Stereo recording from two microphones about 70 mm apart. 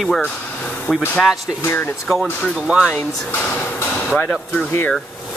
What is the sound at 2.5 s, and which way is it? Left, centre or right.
Speech, centre.